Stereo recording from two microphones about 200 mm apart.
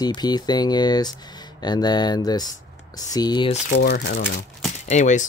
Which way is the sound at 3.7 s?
55° left (ahead or behind).